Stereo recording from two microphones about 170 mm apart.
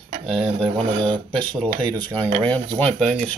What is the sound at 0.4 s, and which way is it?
Speech, 35° right (ahead or behind).